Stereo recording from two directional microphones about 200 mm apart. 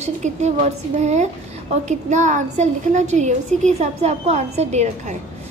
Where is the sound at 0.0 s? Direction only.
35° right (ahead or behind).